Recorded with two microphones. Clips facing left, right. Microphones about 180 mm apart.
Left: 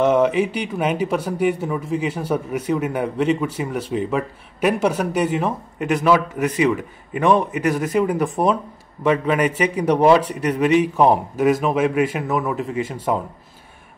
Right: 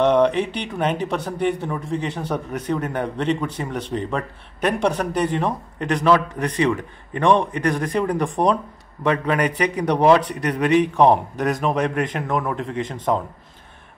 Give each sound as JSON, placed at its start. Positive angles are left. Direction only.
{"t": 0.0, "sound": "a man's voice", "side_deg": 5}